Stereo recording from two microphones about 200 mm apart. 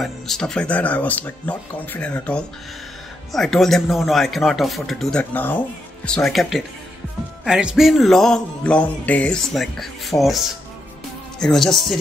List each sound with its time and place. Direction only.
0.0 s speech: centre (ahead or behind)
3.3 s music: centre (ahead or behind)